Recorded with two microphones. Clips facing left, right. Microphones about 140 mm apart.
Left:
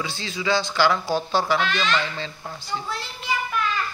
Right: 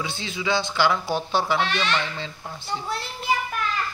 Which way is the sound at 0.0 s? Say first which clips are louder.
Left 1 dB; 20° right (ahead or behind).